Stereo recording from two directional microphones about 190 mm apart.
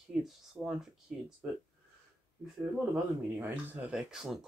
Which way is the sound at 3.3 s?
10° right (ahead or behind).